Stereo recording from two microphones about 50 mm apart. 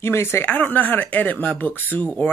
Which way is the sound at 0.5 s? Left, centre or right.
Left.